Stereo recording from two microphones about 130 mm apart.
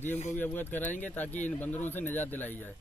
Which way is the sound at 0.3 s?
15° left (ahead or behind).